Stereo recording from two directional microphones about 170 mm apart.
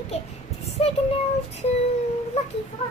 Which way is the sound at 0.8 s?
35° left (ahead or behind).